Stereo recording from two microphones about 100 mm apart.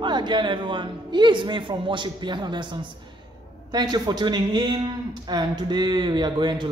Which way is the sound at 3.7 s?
45° right (ahead or behind).